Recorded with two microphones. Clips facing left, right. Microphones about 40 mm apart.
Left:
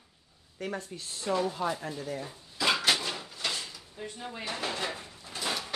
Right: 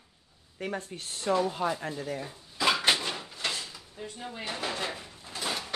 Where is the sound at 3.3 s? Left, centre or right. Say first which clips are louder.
Right 1 dB; right.